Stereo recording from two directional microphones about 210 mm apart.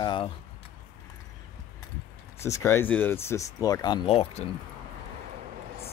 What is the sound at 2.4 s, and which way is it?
Speech, 10° left (ahead or behind).